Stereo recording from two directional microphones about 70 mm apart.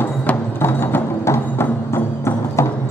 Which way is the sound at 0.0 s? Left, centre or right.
Left.